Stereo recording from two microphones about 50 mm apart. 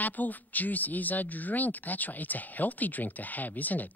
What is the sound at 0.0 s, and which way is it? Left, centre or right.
Speech, left.